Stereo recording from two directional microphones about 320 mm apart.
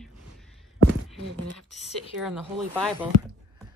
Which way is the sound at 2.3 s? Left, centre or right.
Centre.